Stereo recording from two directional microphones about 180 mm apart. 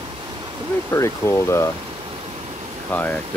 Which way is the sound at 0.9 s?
15° left (ahead or behind).